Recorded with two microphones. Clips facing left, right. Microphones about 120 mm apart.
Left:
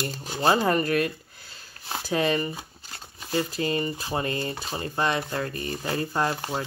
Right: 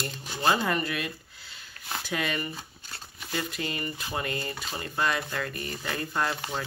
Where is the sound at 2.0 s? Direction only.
35° left (ahead or behind).